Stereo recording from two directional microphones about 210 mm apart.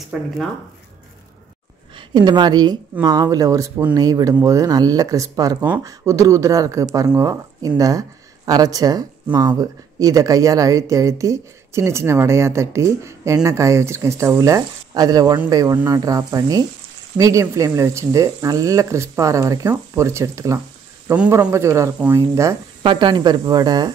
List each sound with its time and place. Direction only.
0.0 s speech: centre (ahead or behind)
2.0 s speech: 20° right (ahead or behind)